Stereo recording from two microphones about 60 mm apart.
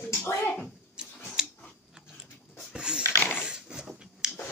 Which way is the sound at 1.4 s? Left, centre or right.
Centre.